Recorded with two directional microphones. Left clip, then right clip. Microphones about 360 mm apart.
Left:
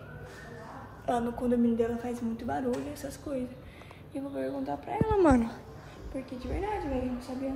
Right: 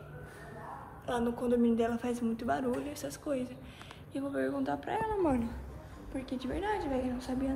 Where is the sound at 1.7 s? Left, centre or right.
Centre.